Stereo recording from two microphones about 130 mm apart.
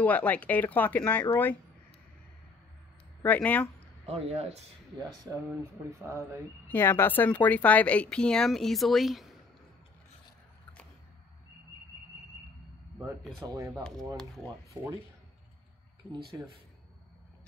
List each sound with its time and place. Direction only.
0.0 s speech: 10° left (ahead or behind)
3.2 s speech: 10° left (ahead or behind)
4.0 s speech: 55° right (ahead or behind)
4.9 s speech: 30° right (ahead or behind)
6.7 s speech: 15° left (ahead or behind); by 9.3 s centre (ahead or behind)
13.4 s speech: 30° right (ahead or behind)